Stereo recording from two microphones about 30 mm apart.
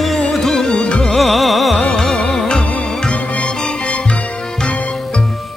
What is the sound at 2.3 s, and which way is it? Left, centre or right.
Music, left.